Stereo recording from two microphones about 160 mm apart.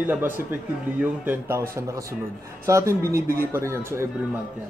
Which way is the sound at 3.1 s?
70° right (ahead or behind).